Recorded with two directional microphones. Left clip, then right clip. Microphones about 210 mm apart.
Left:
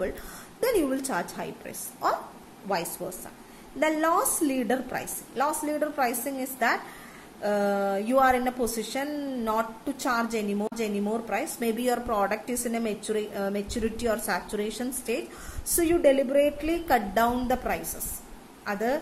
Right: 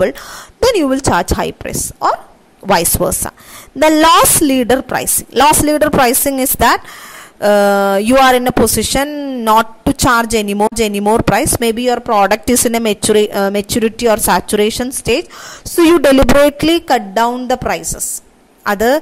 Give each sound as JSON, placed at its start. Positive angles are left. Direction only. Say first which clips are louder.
{"t": 0.0, "sound": "speech", "louder": "right 17 dB", "side_deg": -40}
{"t": 16.5, "sound": "a woman's voice", "louder": "right 13 dB", "side_deg": -45}